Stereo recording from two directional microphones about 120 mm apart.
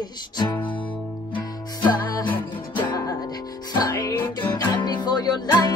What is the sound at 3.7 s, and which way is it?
Music, 30° left (ahead or behind).